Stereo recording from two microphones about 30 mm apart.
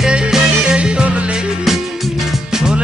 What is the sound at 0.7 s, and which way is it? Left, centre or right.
Music, right.